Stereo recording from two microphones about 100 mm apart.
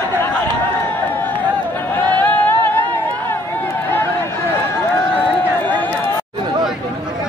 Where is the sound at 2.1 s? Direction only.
15° left (ahead or behind).